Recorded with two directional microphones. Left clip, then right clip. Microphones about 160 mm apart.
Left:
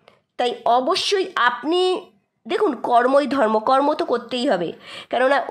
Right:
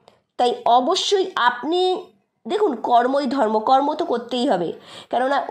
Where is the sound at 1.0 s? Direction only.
10° left (ahead or behind).